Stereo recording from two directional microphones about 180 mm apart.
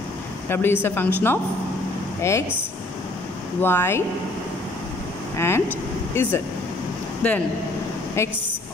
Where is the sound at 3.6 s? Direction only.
15° left (ahead or behind).